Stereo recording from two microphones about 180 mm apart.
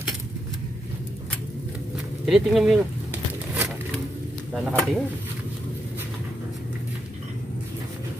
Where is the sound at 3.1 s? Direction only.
10° right (ahead or behind).